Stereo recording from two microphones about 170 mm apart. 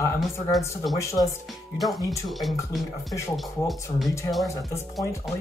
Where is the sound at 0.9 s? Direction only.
20° left (ahead or behind).